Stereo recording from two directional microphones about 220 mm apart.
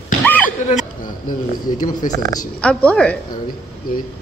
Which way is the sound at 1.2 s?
35° left (ahead or behind).